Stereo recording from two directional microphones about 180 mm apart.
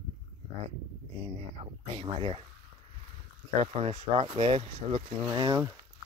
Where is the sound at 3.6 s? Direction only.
30° right (ahead or behind).